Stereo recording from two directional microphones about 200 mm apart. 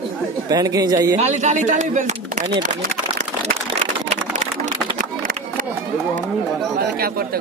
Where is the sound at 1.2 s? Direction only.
35° right (ahead or behind).